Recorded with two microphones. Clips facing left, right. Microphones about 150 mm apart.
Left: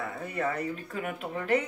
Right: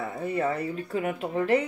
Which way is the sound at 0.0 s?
25° right (ahead or behind).